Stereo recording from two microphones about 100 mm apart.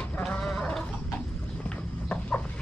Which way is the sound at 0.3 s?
5° left (ahead or behind).